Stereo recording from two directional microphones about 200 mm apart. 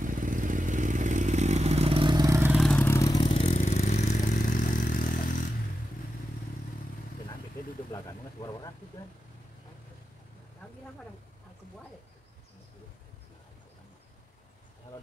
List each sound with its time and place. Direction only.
0.0 s vehicle: 40° right (ahead or behind); by 2.5 s 15° right (ahead or behind)
2.5 s vehicle: centre (ahead or behind)
2.8 s vehicle: 15° left (ahead or behind); by 5.3 s 45° left (ahead or behind)
7.9 s vehicle: 20° left (ahead or behind)